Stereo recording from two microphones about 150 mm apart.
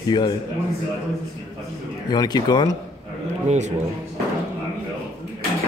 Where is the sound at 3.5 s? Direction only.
50° right (ahead or behind).